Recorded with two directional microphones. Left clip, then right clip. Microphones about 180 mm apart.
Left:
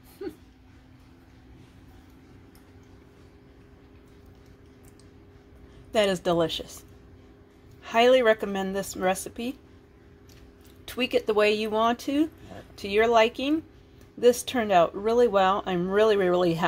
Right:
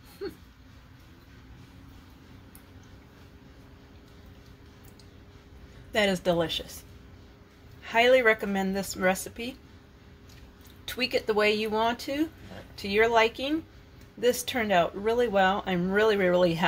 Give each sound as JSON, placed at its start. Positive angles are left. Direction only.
{"t": 5.9, "sound": "speech", "side_deg": 40}
{"t": 7.8, "sound": "speech", "side_deg": 40}
{"t": 10.9, "sound": "speech", "side_deg": 45}